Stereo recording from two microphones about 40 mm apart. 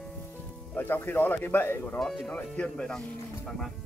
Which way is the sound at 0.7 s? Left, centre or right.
Left.